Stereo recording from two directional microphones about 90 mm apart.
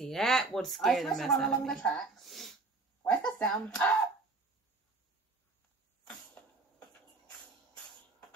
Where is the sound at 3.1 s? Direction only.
10° left (ahead or behind).